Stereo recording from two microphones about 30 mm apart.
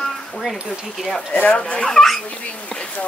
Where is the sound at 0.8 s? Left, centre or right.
Centre.